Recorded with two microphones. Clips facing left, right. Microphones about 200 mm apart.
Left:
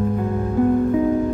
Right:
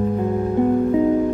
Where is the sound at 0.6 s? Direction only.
20° right (ahead or behind).